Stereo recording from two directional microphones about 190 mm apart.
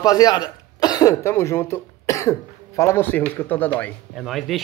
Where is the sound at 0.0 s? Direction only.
20° left (ahead or behind).